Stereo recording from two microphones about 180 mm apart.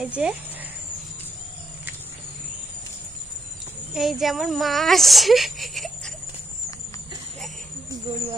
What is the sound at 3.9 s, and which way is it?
Speech, centre (ahead or behind).